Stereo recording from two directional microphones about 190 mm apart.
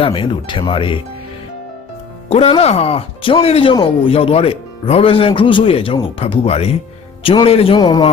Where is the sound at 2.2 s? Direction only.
30° left (ahead or behind).